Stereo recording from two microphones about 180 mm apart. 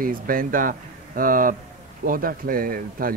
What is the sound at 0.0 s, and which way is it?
Speech, 50° right (ahead or behind).